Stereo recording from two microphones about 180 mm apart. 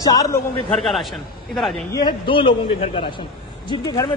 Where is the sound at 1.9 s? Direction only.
25° left (ahead or behind).